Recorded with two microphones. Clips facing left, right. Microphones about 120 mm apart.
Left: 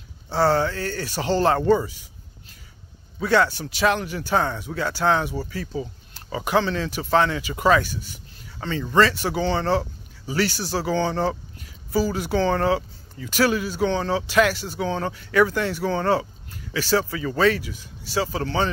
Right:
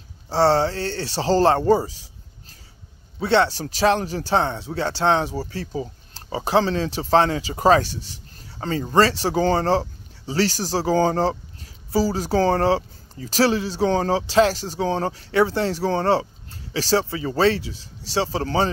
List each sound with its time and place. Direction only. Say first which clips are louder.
0.3 s speech: right 2 dB; 30° right (ahead or behind)
3.2 s speech: right 1 dB; 30° right (ahead or behind)